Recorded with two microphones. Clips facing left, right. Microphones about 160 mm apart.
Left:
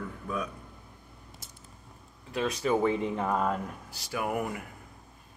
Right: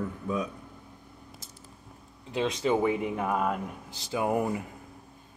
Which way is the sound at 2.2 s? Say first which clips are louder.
Right 1 dB; 25° right (ahead or behind).